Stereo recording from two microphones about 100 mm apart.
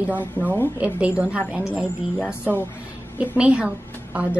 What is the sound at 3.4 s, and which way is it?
Speech, 10° right (ahead or behind).